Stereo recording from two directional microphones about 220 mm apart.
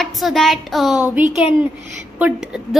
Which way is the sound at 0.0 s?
Centre (ahead or behind).